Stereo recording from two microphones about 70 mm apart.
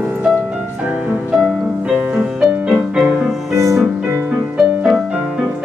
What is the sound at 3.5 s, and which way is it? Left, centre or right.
Music, right.